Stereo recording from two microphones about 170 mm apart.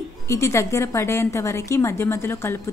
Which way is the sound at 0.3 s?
15° left (ahead or behind).